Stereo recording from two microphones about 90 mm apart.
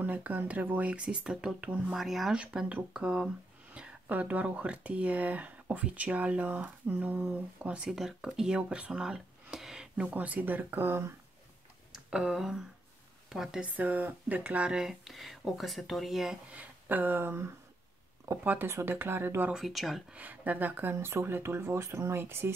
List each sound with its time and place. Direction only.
0.0 s speech: 20° right (ahead or behind)
10.0 s speech: 15° right (ahead or behind)
11.9 s a sound: 5° right (ahead or behind)
13.3 s speech: 5° right (ahead or behind)
13.7 s speech: 15° right (ahead or behind)
16.5 s speech: 20° right (ahead or behind)
19.5 s speech: centre (ahead or behind)
20.2 s speech: 20° right (ahead or behind)